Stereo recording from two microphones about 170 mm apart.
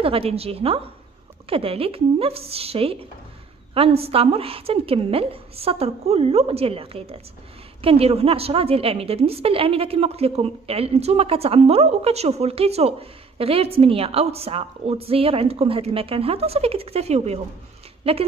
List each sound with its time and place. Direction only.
0.0 s a woman's voice: 35° right (ahead or behind)